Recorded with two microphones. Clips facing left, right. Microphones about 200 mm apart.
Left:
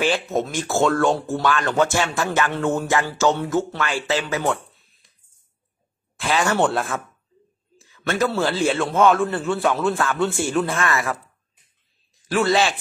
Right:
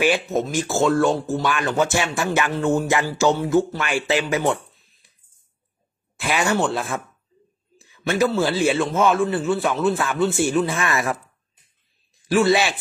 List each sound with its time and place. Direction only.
0.0 s a man's voice: 10° right (ahead or behind)
1.4 s speech: 10° right (ahead or behind)
4.7 s a sound: centre (ahead or behind)
6.1 s speech: 10° right (ahead or behind)
6.6 s a man's voice: centre (ahead or behind)
7.8 s a sound: 10° right (ahead or behind)
8.3 s a man's voice: 10° right (ahead or behind)
10.9 s speech: 20° right (ahead or behind)
12.3 s speech: 10° right (ahead or behind)